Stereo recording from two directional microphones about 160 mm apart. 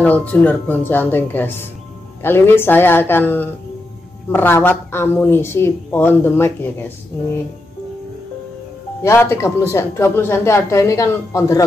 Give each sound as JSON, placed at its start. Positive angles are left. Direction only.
{"t": 0.0, "sound": "a woman's voice", "side_deg": 10}
{"t": 9.0, "sound": "a woman's voice", "side_deg": 15}